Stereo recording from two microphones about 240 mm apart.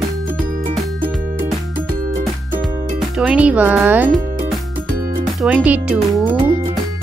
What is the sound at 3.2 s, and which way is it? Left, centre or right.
Speech, centre.